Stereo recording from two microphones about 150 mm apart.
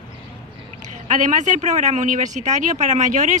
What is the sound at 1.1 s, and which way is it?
A woman's voice, 60° right (ahead or behind).